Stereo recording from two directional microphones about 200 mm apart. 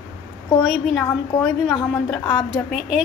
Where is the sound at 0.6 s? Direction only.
Centre (ahead or behind).